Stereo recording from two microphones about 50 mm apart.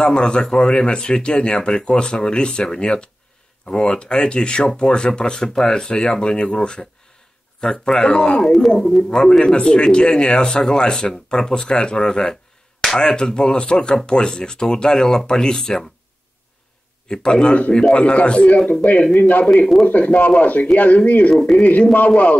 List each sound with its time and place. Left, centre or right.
0.0 s speech: centre
17.1 s a man's voice: centre
18.7 s speech: left
21.4 s speech: centre
21.9 s speech: left